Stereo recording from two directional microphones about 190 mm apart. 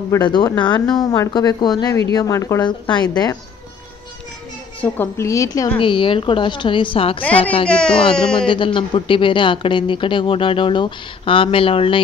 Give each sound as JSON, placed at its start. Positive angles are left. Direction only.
{"t": 0.1, "sound": "speech", "side_deg": 20}
{"t": 4.7, "sound": "speech", "side_deg": 10}
{"t": 7.6, "sound": "speech", "side_deg": 5}
{"t": 8.5, "sound": "speech", "side_deg": 25}